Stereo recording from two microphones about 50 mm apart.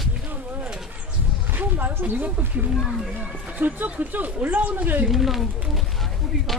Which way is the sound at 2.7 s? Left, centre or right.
Centre.